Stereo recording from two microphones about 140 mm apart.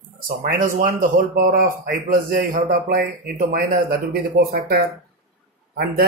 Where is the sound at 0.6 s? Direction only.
80° right.